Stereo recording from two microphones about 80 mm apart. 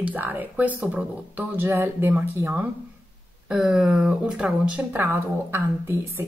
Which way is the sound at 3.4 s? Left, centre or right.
Centre.